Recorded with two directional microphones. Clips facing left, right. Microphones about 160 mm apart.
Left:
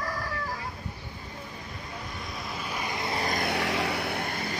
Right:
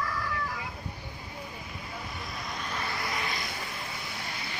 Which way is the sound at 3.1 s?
40° left (ahead or behind).